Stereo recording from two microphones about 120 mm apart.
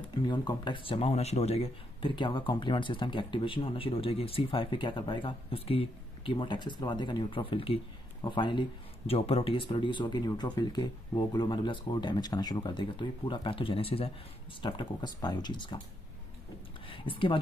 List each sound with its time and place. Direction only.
0.1 s speech: 40° left (ahead or behind)
14.6 s speech: 40° left (ahead or behind)
16.9 s speech: 45° left (ahead or behind)